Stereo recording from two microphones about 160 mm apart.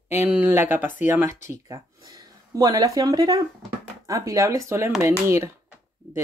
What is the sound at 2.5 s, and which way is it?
Speech, 25° right (ahead or behind).